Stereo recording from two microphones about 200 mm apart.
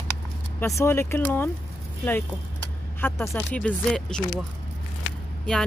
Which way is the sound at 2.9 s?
10° left (ahead or behind).